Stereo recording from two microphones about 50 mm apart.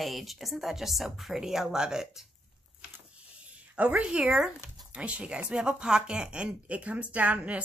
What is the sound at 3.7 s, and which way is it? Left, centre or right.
A woman's voice, right.